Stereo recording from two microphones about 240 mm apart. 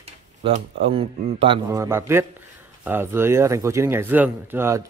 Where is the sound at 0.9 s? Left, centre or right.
Right.